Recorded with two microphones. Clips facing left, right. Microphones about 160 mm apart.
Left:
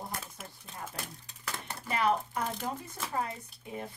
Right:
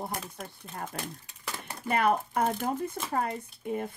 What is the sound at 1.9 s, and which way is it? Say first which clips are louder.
Speech: right 3 dB; 55° right (ahead or behind).